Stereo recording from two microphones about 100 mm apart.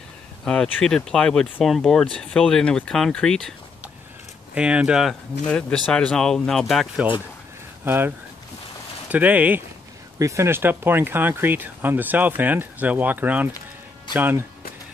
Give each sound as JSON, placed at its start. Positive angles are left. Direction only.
{"t": 0.5, "sound": "speech", "side_deg": 10}
{"t": 4.6, "sound": "speech", "side_deg": -10}
{"t": 5.5, "sound": "speech", "side_deg": 10}
{"t": 7.8, "sound": "speech", "side_deg": -20}
{"t": 9.1, "sound": "speech", "side_deg": -15}
{"t": 10.1, "sound": "speech", "side_deg": -30}